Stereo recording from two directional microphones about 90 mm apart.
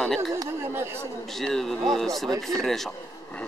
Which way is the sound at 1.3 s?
5° left (ahead or behind).